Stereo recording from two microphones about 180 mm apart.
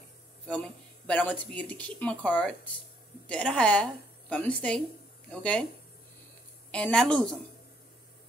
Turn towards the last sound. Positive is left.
turn(degrees=5)  # may be behind; listen again after turning